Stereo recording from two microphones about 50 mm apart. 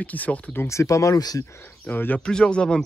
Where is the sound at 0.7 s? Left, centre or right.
Left.